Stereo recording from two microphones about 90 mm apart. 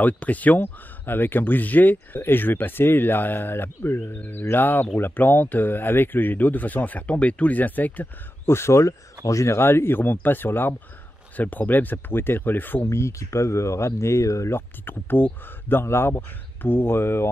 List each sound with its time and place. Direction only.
0.0 s speech: 15° left (ahead or behind)